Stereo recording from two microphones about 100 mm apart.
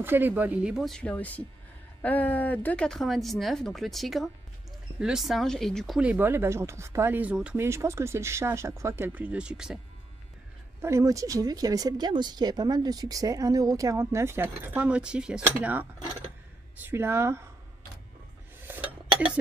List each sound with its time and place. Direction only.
0.0 s speech: 20° right (ahead or behind)
0.7 s speech: centre (ahead or behind)
1.0 s speech: 15° left (ahead or behind)
5.9 s speech: 15° right (ahead or behind)
7.5 s speech: 25° right (ahead or behind); by 9.8 s 10° right (ahead or behind)
10.8 s speech: 30° right (ahead or behind)
18.7 s dishes: 15° right (ahead or behind)